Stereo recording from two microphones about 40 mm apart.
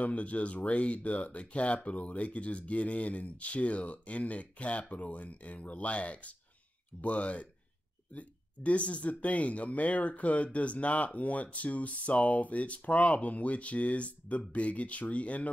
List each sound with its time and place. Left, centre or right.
0.0 s speech: left